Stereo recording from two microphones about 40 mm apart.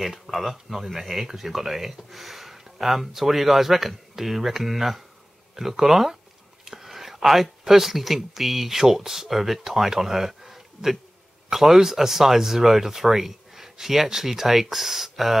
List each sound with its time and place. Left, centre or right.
0.0 s speech: centre